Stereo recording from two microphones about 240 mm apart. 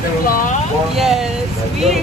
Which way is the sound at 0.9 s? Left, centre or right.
Centre.